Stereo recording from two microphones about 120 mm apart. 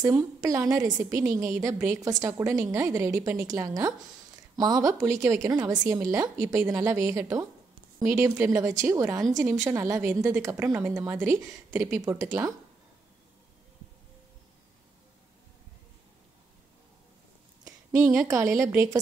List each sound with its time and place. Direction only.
0.0 s a woman's voice: 30° right (ahead or behind)
17.6 s a woman's voice: 25° right (ahead or behind)